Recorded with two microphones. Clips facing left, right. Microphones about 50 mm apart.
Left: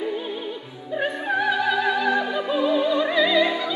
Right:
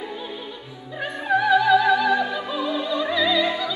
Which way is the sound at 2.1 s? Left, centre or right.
Centre.